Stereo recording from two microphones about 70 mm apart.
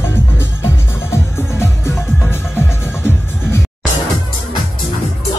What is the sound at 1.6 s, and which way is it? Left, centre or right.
Music, left.